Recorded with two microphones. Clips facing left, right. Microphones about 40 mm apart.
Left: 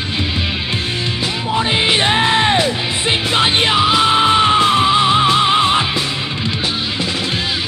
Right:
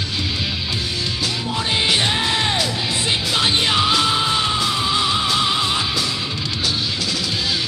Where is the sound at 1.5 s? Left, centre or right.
Left.